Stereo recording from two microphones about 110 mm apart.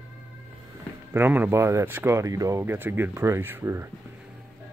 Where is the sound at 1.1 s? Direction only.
20° right (ahead or behind).